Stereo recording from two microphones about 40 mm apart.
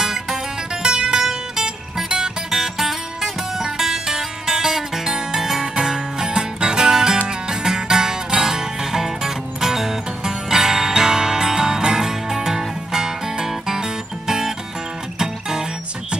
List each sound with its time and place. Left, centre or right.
0.0 s music: centre